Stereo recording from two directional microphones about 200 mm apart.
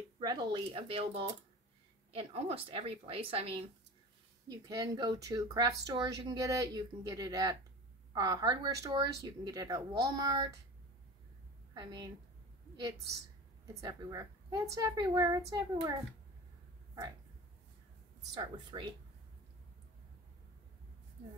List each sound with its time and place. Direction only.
0.2 s a woman's voice: 20° right (ahead or behind)
11.7 s a woman's voice: 20° right (ahead or behind)
18.3 s a woman's voice: 20° right (ahead or behind)